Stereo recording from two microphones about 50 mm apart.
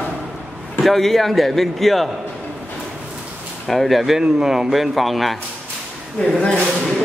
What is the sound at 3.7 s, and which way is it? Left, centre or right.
Speech, centre.